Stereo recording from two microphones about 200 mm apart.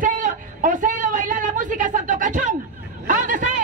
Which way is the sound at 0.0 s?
40° right (ahead or behind).